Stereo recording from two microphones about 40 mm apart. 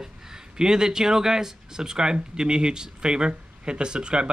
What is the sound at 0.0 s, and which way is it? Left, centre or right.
Speech, centre.